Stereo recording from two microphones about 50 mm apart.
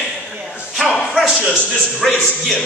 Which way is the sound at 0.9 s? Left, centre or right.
Centre.